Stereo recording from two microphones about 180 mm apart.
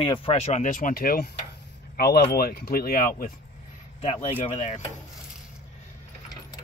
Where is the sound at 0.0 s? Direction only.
30° left (ahead or behind); by 3.3 s 50° left (ahead or behind).